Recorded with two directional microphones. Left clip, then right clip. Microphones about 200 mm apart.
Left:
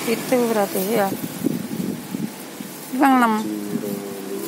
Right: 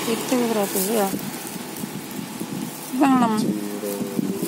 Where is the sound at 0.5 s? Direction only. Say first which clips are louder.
Left 2 dB; 20° left (ahead or behind).